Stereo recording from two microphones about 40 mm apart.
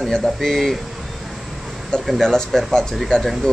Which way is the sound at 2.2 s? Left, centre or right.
Centre.